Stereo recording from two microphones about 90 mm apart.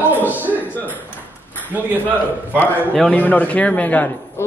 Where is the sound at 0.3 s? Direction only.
20° right (ahead or behind).